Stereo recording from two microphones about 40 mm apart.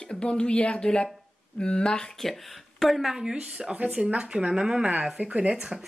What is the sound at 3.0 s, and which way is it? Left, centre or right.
Speech, centre.